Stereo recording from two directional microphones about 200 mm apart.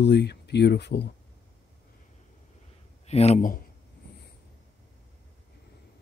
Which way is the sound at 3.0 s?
30° left (ahead or behind).